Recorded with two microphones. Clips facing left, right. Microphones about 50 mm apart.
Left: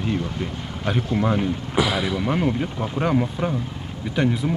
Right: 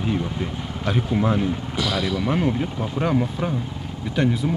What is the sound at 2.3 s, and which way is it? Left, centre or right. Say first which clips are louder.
Speech: even; centre.